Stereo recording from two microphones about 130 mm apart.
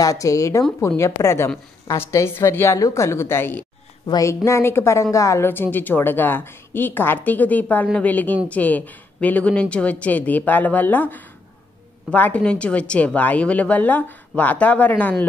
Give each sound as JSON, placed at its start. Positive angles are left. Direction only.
{"t": 0.0, "sound": "a woman's voice", "side_deg": 25}
{"t": 4.0, "sound": "a woman's voice", "side_deg": 30}